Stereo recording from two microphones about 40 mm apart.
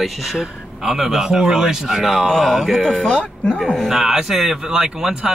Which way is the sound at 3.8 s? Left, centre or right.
Centre.